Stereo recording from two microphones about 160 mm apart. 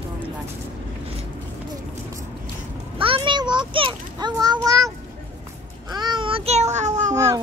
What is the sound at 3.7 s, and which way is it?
Children playing, 30° right (ahead or behind).